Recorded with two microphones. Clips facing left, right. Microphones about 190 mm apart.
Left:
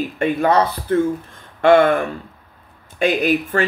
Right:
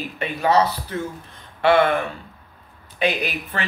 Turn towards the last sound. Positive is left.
turn(degrees=45)  # may be behind; listen again after turning